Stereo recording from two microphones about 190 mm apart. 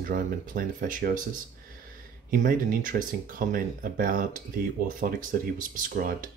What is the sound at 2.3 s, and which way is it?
Speech, 45° right (ahead or behind).